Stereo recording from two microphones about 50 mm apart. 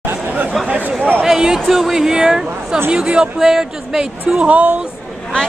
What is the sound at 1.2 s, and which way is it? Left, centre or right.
Speech, centre.